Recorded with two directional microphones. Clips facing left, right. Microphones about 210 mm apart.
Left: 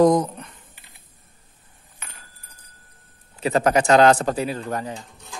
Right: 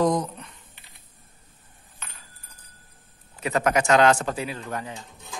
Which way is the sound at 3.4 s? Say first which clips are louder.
Left 4 dB; 30° left (ahead or behind).